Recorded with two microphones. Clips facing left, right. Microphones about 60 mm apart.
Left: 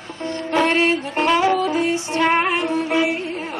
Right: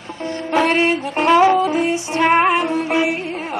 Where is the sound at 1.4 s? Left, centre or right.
Right.